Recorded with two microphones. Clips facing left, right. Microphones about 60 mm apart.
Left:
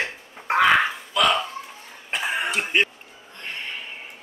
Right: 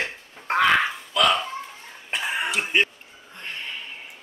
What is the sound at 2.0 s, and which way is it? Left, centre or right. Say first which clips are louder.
Cough: left 1 dB; centre.